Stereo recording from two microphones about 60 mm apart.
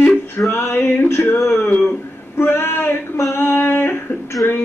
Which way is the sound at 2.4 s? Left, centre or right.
Left.